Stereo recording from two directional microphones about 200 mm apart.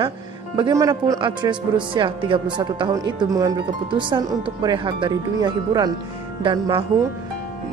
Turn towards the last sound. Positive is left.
turn(degrees=-25)  # may be behind; listen again after turning